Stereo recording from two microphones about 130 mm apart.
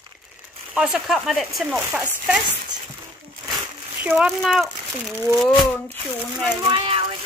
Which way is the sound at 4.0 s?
10° right (ahead or behind).